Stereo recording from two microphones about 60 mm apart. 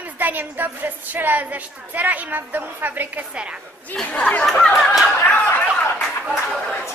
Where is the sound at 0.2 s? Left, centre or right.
Right.